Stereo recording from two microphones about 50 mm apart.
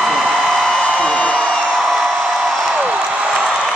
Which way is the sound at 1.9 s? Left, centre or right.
Centre.